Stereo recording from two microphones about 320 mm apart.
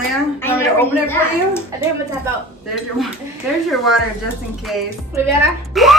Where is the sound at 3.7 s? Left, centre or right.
Centre.